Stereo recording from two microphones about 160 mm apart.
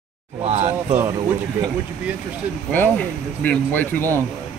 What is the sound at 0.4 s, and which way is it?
Speech, 40° right (ahead or behind).